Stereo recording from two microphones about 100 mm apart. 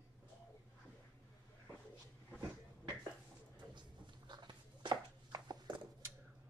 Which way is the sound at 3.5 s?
50° right (ahead or behind).